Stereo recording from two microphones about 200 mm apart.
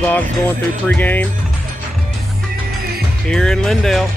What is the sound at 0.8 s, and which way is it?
Speech, 10° left (ahead or behind).